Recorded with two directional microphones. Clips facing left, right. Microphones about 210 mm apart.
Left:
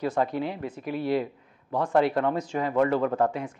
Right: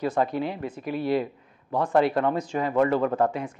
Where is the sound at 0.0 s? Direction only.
15° right (ahead or behind).